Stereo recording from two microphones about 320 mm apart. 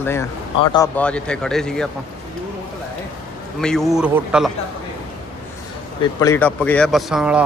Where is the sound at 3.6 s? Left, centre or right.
Centre.